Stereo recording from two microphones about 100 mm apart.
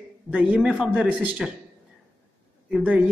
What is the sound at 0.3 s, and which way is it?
A man's voice, 10° right (ahead or behind).